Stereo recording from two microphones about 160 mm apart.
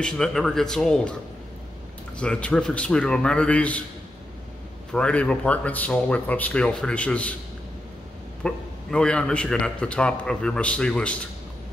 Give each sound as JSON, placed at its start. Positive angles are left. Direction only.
{"t": 0.0, "sound": "a man's voice", "side_deg": 5}
{"t": 2.1, "sound": "a man's voice", "side_deg": 5}
{"t": 4.9, "sound": "a man's voice", "side_deg": 5}
{"t": 8.5, "sound": "a man's voice", "side_deg": 5}